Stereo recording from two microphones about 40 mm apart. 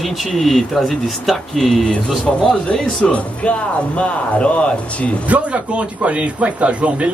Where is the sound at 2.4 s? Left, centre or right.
Left.